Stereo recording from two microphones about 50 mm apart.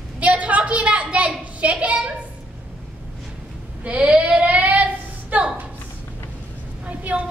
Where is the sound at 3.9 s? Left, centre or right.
Right.